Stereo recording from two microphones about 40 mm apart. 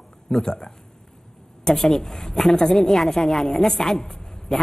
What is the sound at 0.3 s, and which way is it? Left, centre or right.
Speech, centre.